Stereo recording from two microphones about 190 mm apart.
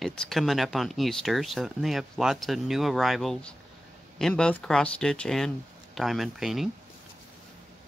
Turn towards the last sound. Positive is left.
turn(degrees=0)  # may be behind; listen again after turning